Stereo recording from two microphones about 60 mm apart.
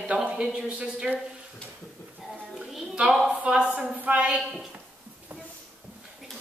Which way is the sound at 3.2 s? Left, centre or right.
Centre.